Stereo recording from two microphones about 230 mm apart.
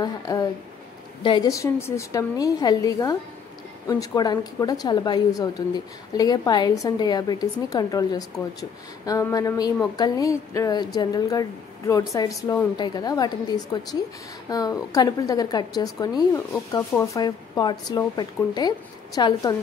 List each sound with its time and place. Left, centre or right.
0.0 s a woman's voice: centre